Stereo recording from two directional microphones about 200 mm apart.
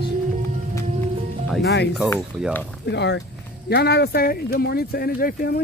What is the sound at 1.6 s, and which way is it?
Speech, 60° left (ahead or behind).